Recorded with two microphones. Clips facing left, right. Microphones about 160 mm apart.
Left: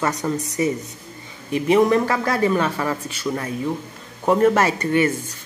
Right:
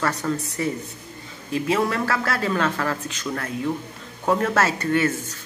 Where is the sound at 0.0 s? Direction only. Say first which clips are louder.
Left 2 dB; 15° left (ahead or behind).